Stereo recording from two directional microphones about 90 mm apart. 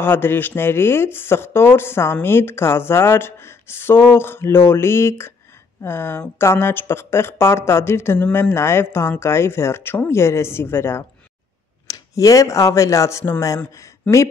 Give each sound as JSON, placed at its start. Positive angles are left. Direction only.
{"t": 0.0, "sound": "speech", "side_deg": 25}
{"t": 11.9, "sound": "speech", "side_deg": 40}